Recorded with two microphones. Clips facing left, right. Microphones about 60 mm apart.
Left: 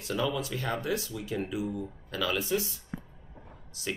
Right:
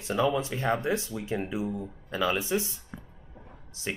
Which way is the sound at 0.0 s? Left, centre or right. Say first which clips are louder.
Right 4 dB; right.